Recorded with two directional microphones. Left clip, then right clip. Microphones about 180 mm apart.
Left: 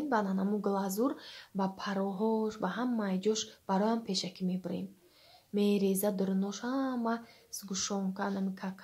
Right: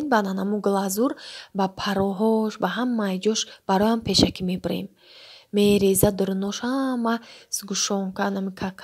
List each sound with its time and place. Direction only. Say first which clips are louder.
0.1 s speech: right 10 dB; 45° right (ahead or behind)